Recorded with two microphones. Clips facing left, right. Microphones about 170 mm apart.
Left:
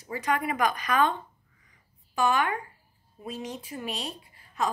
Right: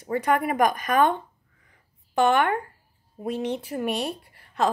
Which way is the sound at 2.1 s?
60° right (ahead or behind).